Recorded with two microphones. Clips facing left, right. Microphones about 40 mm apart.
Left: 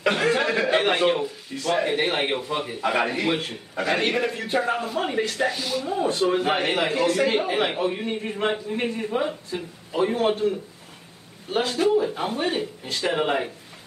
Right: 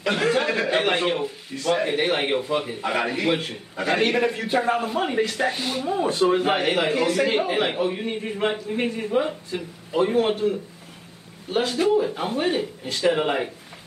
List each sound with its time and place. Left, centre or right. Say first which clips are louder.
0.1 s a man's voice: right 3 dB; centre
5.5 s speech: even; right
5.9 s a man's voice: right 2 dB; centre
11.5 s a man's voice: right 1 dB; centre